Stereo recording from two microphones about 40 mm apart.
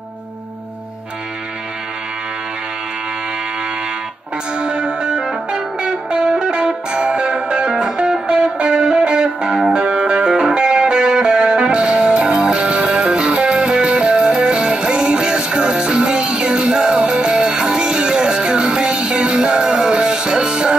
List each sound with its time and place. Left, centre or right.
4.6 s music: right